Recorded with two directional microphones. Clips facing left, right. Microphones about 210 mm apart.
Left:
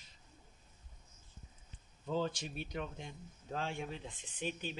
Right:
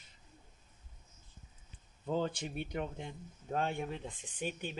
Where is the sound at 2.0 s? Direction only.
55° right (ahead or behind).